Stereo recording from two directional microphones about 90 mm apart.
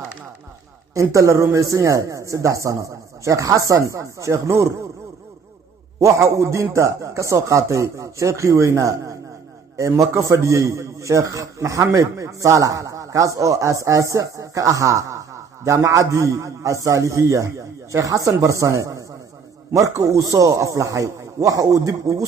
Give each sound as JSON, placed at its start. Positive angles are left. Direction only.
{"t": 0.9, "sound": "a man's voice", "side_deg": -35}
{"t": 5.9, "sound": "a man's voice", "side_deg": -35}